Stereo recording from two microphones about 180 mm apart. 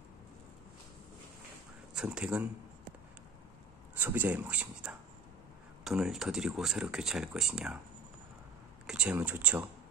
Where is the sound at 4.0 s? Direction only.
10° right (ahead or behind).